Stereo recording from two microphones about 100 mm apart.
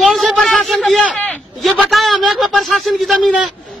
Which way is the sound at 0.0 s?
Centre (ahead or behind).